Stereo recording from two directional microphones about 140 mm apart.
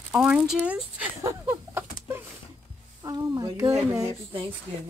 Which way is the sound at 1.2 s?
15° right (ahead or behind).